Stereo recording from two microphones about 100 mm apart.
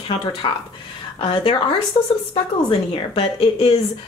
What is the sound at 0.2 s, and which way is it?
A woman's voice, 55° left (ahead or behind).